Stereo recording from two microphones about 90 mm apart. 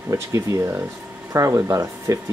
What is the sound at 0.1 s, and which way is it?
Speech, 35° right (ahead or behind).